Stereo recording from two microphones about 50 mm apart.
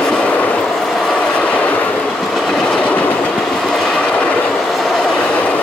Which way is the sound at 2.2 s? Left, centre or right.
Centre.